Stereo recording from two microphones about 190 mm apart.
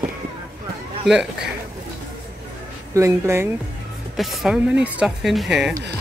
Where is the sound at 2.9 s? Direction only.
15° right (ahead or behind).